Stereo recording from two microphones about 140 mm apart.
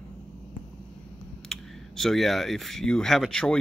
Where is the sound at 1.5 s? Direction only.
Centre (ahead or behind).